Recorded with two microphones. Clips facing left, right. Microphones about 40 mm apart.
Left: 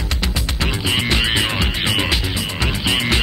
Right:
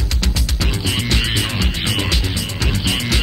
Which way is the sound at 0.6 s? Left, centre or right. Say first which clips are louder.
Left 2 dB; left.